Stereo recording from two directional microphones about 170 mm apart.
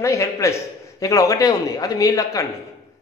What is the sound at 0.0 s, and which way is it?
A man's voice, 20° left (ahead or behind).